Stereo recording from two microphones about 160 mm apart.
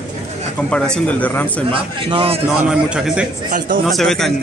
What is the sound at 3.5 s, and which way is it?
Speech, 60° right (ahead or behind).